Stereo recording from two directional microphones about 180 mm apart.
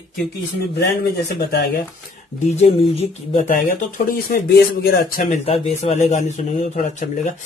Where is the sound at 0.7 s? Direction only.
60° left (ahead or behind).